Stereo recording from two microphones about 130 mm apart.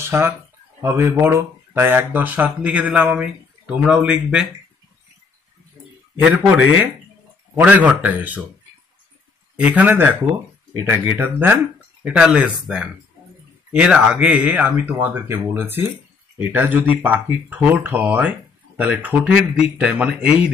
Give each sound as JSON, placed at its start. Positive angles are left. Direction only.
{"t": 0.0, "sound": "speech", "side_deg": -20}
{"t": 6.2, "sound": "speech", "side_deg": -10}
{"t": 9.6, "sound": "speech", "side_deg": -10}